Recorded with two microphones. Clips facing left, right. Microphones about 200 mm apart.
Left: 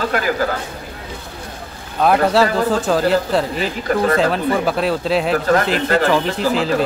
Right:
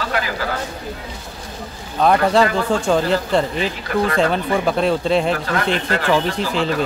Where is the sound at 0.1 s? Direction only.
45° left (ahead or behind).